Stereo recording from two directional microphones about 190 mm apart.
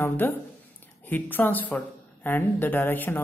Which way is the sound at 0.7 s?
10° left (ahead or behind).